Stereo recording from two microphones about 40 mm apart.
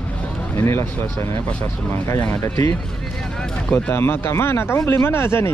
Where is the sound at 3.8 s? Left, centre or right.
Left.